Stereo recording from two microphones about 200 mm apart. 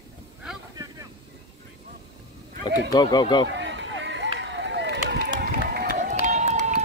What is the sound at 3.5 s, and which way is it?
Chop, 60° right (ahead or behind).